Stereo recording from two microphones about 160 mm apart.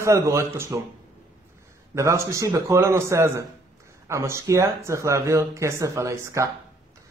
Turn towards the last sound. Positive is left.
turn(degrees=-20)  # may be behind; listen again after turning